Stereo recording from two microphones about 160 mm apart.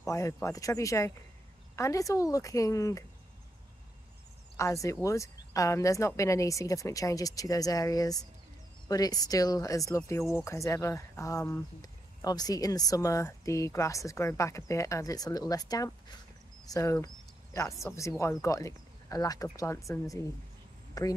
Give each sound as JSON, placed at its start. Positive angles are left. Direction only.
{"t": 0.0, "sound": "speech", "side_deg": 20}
{"t": 4.8, "sound": "speech", "side_deg": 20}